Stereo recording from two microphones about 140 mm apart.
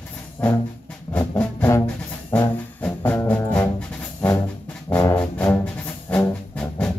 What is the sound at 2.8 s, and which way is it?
Music, 15° left (ahead or behind).